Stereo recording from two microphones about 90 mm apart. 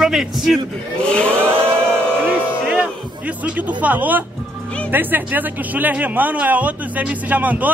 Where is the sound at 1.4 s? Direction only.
20° right (ahead or behind).